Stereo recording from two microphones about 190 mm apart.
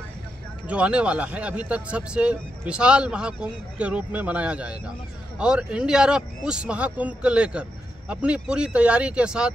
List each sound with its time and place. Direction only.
0.7 s speech: 5° right (ahead or behind)